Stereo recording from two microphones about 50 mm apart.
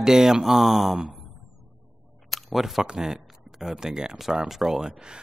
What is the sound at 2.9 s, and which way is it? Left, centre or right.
Speech, centre.